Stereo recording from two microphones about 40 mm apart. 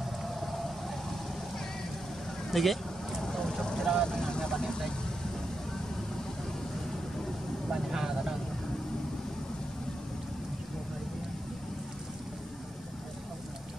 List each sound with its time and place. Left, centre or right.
0.2 s vehicle: centre
2.5 s speech: centre
3.2 s vehicle: centre
7.7 s vehicle: centre